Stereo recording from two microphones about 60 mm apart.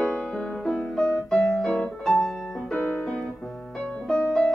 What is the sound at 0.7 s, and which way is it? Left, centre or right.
Piano, centre.